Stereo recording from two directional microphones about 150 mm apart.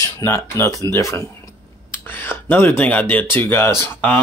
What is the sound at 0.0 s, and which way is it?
Speech, 20° left (ahead or behind).